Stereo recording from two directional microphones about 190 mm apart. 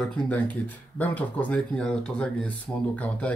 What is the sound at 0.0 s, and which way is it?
Speech, 5° left (ahead or behind).